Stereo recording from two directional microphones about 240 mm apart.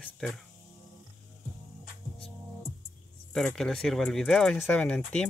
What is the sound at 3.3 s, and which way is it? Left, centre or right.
Speech, centre.